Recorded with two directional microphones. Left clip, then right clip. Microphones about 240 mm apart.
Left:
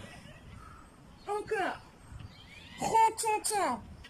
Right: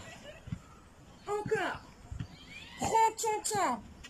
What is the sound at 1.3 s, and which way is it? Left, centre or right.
Speech, centre.